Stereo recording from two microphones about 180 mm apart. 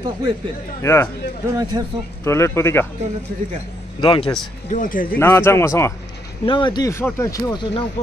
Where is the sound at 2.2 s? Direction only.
15° left (ahead or behind).